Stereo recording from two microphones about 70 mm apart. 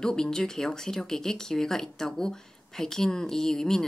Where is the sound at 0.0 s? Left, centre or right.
Centre.